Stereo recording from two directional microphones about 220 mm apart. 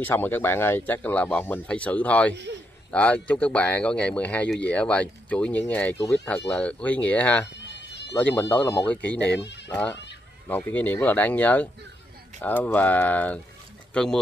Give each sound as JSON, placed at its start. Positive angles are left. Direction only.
{"t": 0.0, "sound": "speech", "side_deg": 10}
{"t": 7.6, "sound": "a sound", "side_deg": 50}
{"t": 8.1, "sound": "speech", "side_deg": 10}
{"t": 10.5, "sound": "speech", "side_deg": 10}